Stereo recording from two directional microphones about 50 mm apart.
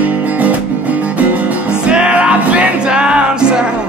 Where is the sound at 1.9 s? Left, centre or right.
Right.